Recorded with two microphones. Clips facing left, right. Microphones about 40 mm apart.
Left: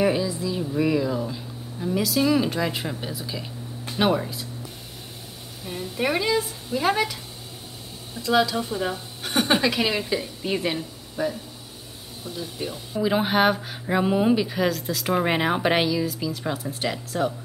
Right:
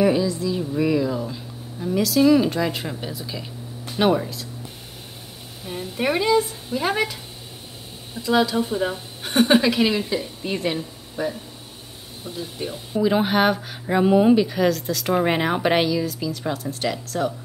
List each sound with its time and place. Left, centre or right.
0.0 s speech: centre
5.7 s a woman's voice: centre
8.2 s a woman's voice: centre
9.8 s a woman's voice: centre
10.1 s a woman's voice: centre
12.9 s speech: centre